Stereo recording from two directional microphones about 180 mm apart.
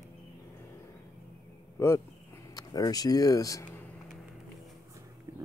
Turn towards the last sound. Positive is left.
turn(degrees=20)  # may be behind; listen again after turning